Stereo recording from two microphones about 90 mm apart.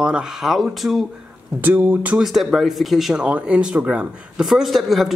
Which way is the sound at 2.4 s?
Centre (ahead or behind).